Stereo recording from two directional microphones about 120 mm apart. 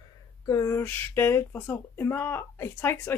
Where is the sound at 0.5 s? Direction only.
25° left (ahead or behind).